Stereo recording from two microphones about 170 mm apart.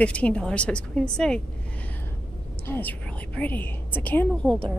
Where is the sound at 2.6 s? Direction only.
10° left (ahead or behind).